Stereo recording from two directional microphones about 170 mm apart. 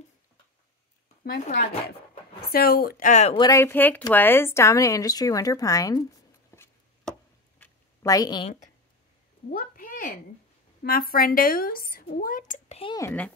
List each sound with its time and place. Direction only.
1.2 s a woman's voice: 60° left (ahead or behind); by 3.3 s 45° left (ahead or behind)
3.3 s a woman's voice: 20° left (ahead or behind)
6.5 s chopping: 15° left (ahead or behind)
7.1 s chop: 10° left (ahead or behind)
8.0 s a woman's voice: 20° left (ahead or behind)
9.5 s a sound: 55° left (ahead or behind)
10.8 s a woman's voice: 60° left (ahead or behind); by 12.9 s 35° left (ahead or behind)